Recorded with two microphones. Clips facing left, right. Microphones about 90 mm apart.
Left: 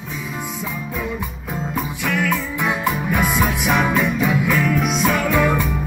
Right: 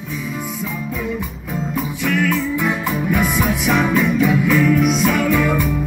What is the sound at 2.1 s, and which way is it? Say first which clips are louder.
Music: right 3 dB; 5° left (ahead or behind).